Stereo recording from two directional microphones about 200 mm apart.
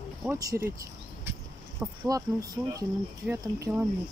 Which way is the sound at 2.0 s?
20° right (ahead or behind).